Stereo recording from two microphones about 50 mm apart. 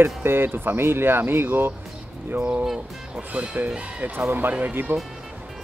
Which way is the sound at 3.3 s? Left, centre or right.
Right.